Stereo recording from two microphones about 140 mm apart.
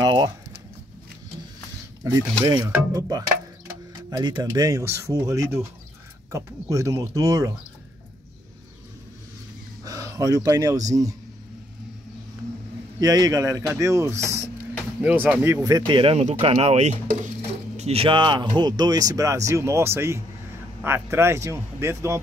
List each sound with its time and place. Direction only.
0.0 s a sound: 30° right (ahead or behind)
2.0 s speech: 20° right (ahead or behind)
9.8 s speech: 25° right (ahead or behind)
13.0 s speech: 25° right (ahead or behind)
15.7 s speech: 35° right (ahead or behind); by 17.3 s 60° right (ahead or behind)
17.7 s speech: 45° right (ahead or behind); by 22.2 s 20° right (ahead or behind)